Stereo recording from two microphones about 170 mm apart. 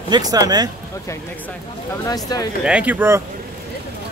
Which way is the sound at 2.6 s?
5° right (ahead or behind).